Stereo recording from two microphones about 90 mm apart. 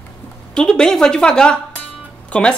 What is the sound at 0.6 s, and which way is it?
Speech, 10° left (ahead or behind).